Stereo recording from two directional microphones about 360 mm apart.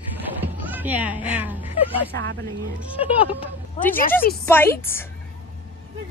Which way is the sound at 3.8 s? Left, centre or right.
Centre.